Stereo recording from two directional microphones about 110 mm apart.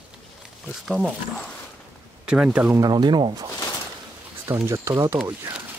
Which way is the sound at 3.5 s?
35° left (ahead or behind).